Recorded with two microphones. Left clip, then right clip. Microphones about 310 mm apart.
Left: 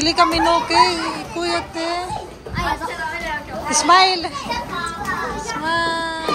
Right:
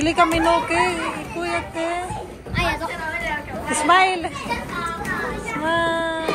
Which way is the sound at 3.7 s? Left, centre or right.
Centre.